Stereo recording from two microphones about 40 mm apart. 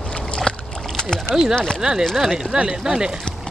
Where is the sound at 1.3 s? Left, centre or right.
Centre.